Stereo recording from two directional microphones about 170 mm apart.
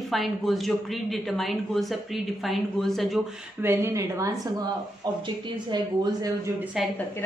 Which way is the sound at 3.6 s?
15° right (ahead or behind).